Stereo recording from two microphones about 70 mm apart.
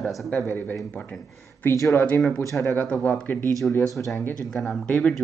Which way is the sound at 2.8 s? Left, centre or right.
Centre.